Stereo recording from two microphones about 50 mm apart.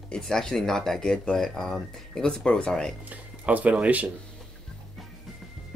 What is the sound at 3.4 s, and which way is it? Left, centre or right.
Speech, right.